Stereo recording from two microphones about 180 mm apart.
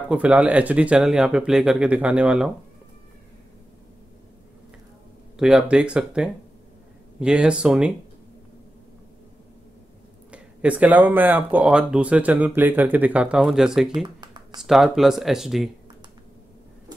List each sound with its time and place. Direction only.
0.1 s speech: 5° right (ahead or behind)
5.4 s speech: 5° right (ahead or behind)
10.3 s speech: 5° right (ahead or behind)
14.0 s a sound: 25° right (ahead or behind)
14.6 s speech: centre (ahead or behind)